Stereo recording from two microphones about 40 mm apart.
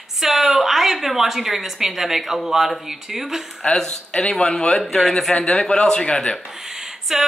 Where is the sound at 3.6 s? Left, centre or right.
Centre.